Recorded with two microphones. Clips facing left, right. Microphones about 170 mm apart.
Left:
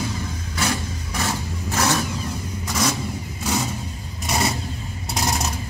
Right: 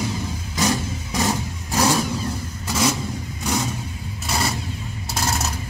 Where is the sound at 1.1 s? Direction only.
15° right (ahead or behind).